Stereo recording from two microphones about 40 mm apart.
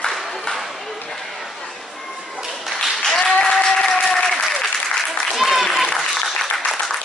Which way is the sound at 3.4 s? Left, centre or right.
Centre.